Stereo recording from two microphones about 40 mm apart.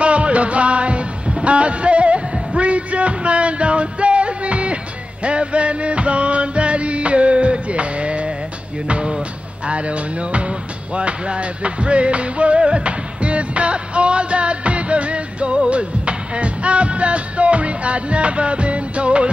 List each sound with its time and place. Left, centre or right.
0.0 s music: right